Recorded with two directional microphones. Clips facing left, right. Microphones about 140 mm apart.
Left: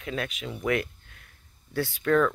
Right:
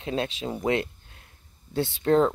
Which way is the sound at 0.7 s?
25° right (ahead or behind).